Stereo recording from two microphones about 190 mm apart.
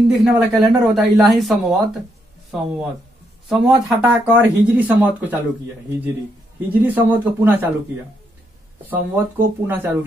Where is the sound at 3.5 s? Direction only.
Centre (ahead or behind).